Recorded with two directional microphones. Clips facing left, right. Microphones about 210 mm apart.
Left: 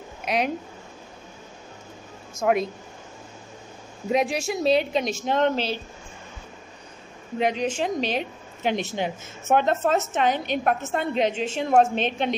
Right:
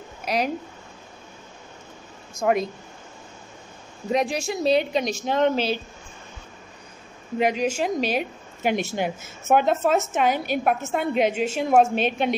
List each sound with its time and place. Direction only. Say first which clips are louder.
0.2 s a sound: even; centre (ahead or behind)
2.4 s speech: even; centre (ahead or behind)
4.1 s speech: even; 5° left (ahead or behind)
7.3 s a woman's voice: right 2 dB; 5° right (ahead or behind)